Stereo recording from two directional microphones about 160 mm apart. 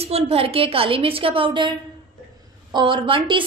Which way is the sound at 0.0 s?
40° right (ahead or behind).